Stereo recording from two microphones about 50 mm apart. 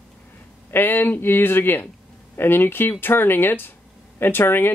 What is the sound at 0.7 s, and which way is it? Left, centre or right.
Speech, left.